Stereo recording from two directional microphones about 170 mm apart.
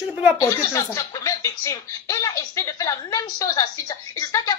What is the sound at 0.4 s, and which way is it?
Speech, 20° left (ahead or behind).